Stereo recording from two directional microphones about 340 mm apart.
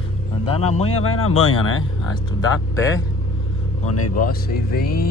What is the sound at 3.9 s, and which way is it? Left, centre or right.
Speech, left.